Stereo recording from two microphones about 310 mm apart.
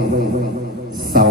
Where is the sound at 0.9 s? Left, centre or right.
Right.